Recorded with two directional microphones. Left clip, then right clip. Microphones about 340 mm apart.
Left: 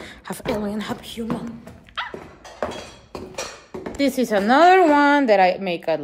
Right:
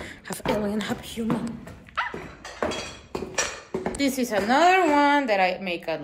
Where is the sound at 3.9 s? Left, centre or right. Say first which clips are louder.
Left 6 dB; left.